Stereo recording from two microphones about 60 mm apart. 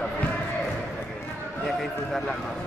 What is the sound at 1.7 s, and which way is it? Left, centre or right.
Speech, centre.